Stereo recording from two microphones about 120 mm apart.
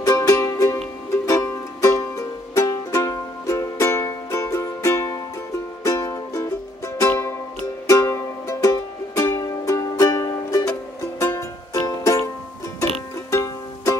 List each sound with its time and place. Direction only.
0.0 s music: 25° left (ahead or behind)
13.3 s music: 25° left (ahead or behind)